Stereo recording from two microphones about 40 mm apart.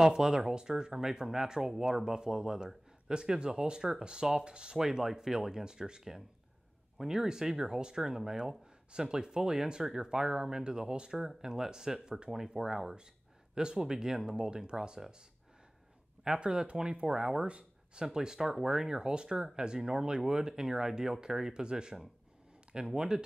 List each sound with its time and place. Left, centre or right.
0.0 s speech: centre
4.7 s speech: centre
16.3 s speech: right
17.2 s speech: centre
17.5 s a sound: right
18.0 s speech: centre